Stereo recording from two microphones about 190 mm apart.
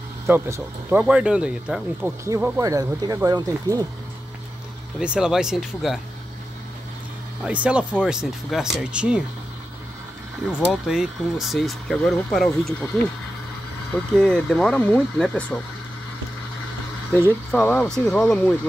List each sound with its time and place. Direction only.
0.3 s speech: 10° right (ahead or behind)
4.9 s speech: 5° right (ahead or behind)
7.4 s speech: 5° right (ahead or behind)
10.7 s speech: centre (ahead or behind)
13.9 s speech: 5° left (ahead or behind)
17.2 s speech: 5° left (ahead or behind)